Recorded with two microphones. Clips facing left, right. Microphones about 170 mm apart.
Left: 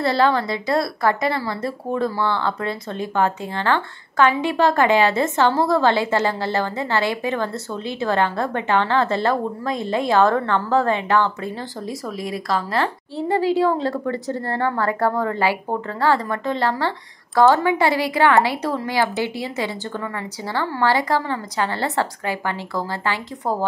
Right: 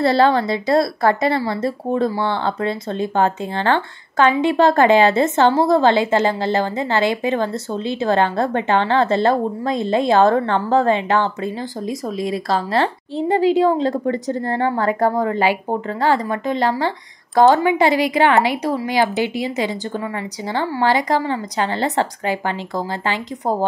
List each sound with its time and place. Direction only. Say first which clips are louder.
0.0 s a woman's voice: right 4 dB; 30° right (ahead or behind)
20.8 s a woman's voice: right 2 dB; 15° right (ahead or behind)